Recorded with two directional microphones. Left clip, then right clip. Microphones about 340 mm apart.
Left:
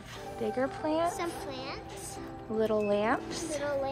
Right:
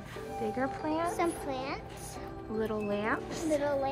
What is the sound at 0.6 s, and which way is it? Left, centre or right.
Speech, centre.